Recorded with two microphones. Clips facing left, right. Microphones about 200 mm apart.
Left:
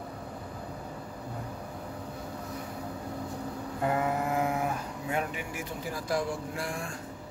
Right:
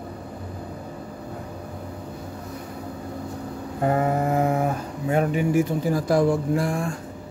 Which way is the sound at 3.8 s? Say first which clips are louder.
Right 7 dB; 40° right (ahead or behind).